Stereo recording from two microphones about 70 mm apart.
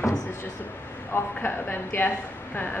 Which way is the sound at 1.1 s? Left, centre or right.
Left.